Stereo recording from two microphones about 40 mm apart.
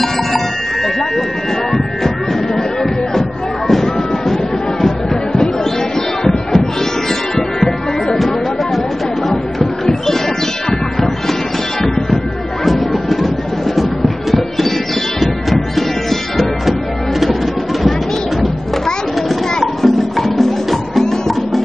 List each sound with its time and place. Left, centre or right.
0.8 s a sound: centre
1.7 s music: centre
9.8 s music: centre
12.6 s music: centre
15.1 s music: centre
19.2 s music: centre